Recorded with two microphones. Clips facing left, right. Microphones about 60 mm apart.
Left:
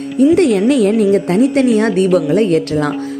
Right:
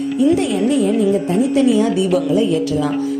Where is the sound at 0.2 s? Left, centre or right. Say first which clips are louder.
Left 6 dB; left.